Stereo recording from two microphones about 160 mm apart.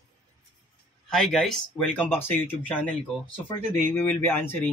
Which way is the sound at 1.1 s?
Centre (ahead or behind).